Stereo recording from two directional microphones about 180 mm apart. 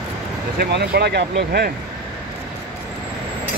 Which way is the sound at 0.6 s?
65° right (ahead or behind).